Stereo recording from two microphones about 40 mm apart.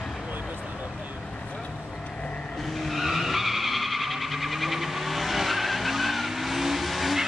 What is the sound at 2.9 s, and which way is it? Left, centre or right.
Vehicle, centre.